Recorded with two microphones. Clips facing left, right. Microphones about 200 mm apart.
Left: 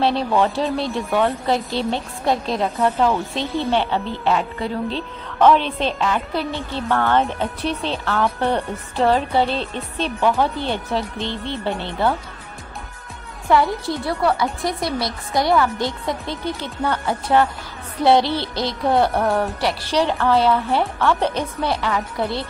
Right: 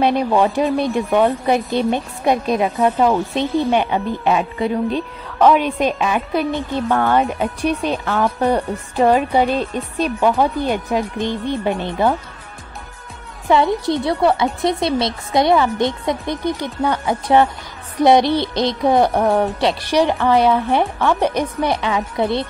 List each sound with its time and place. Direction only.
0.0 s speech: 15° right (ahead or behind)
13.5 s a woman's voice: 20° right (ahead or behind)